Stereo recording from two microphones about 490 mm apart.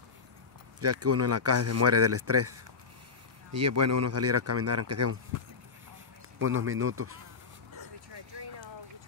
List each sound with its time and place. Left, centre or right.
0.7 s speech: right
6.4 s speech: right